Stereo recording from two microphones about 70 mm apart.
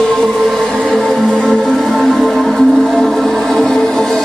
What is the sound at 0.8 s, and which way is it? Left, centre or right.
Music, centre.